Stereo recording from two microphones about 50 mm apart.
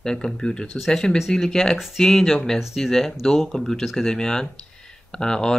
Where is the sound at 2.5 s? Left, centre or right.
Centre.